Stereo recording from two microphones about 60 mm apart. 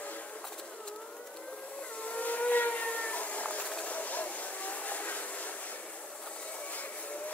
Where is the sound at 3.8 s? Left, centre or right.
Left.